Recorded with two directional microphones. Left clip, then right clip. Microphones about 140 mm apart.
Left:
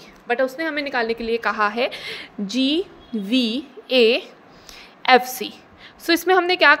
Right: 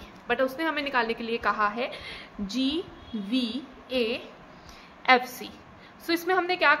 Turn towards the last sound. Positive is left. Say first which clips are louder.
# left 8 dB
turn(degrees=55)  # may be behind; listen again after turning